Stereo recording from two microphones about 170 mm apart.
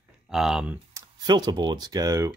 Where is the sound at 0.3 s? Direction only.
Centre (ahead or behind).